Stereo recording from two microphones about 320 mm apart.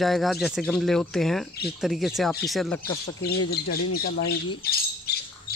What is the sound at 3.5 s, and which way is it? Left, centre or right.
Speech, left.